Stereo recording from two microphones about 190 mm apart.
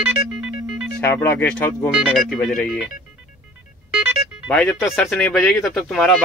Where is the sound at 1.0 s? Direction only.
10° left (ahead or behind).